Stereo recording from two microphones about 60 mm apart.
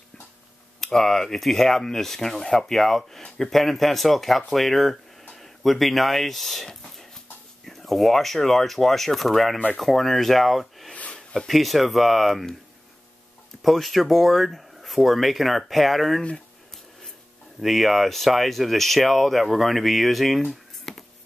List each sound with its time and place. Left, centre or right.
0.7 s speech: centre
10.9 s a sound: centre
11.3 s speech: centre
13.6 s speech: centre
17.6 s speech: centre